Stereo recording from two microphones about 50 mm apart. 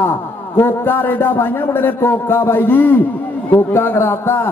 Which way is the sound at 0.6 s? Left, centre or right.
Left.